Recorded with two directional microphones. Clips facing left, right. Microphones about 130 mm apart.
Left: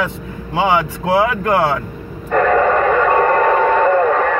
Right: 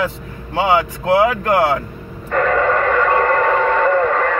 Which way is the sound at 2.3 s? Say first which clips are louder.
Left 3 dB; 15° left (ahead or behind).